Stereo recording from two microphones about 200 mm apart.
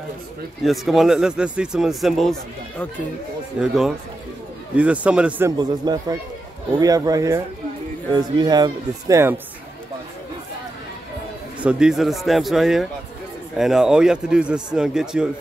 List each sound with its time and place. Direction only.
0.7 s speech: centre (ahead or behind)
3.5 s a man's voice: centre (ahead or behind)
5.6 s a man's voice: 20° right (ahead or behind)
11.6 s speech: 5° right (ahead or behind)